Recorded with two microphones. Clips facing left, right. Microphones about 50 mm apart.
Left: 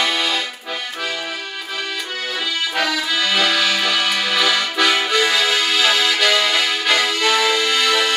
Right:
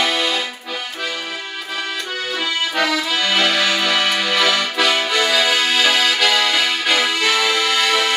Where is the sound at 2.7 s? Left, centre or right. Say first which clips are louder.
Right 1 dB; centre.